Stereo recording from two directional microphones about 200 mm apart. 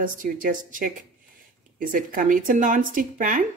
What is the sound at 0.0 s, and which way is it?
A woman's voice, 45° right (ahead or behind).